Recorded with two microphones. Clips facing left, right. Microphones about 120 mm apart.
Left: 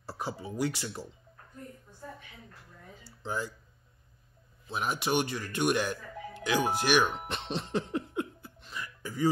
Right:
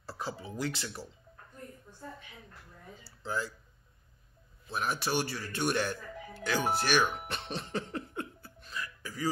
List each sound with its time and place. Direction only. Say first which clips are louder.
0.0 s speech: left 2 dB; 15° left (ahead or behind)
3.3 s speech: even; 15° left (ahead or behind)
4.6 s speech: left 2 dB; 15° left (ahead or behind)
7.2 s music: left 3 dB; 20° left (ahead or behind)